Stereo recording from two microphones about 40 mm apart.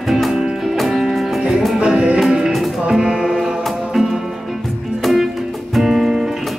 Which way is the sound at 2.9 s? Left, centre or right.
Centre.